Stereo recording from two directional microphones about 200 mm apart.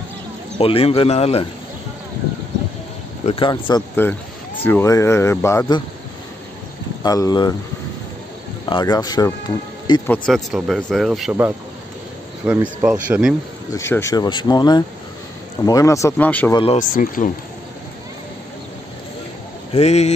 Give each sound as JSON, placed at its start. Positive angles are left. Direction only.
{"t": 0.6, "sound": "speech", "side_deg": 30}
{"t": 3.3, "sound": "speech", "side_deg": 25}
{"t": 4.6, "sound": "speech", "side_deg": 15}
{"t": 7.0, "sound": "speech", "side_deg": 20}
{"t": 8.6, "sound": "speech", "side_deg": 20}
{"t": 10.0, "sound": "speech", "side_deg": 5}
{"t": 13.7, "sound": "speech", "side_deg": 15}
{"t": 16.7, "sound": "speech", "side_deg": 45}
{"t": 19.7, "sound": "speech", "side_deg": 35}